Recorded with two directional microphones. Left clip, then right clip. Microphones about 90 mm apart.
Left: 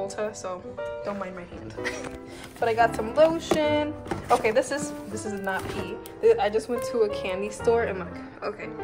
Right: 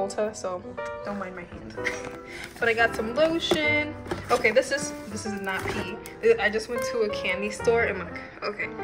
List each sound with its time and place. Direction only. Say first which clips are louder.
0.0 s speech: right 3 dB; 20° right (ahead or behind)
2.6 s speech: left 1 dB; 15° left (ahead or behind)
5.1 s speech: left 2 dB; 30° left (ahead or behind)
7.6 s speech: even; 5° left (ahead or behind)